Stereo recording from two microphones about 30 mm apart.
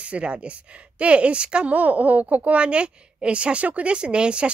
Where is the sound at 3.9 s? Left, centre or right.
Right.